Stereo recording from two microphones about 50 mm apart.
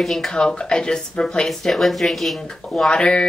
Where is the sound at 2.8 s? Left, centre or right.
Centre.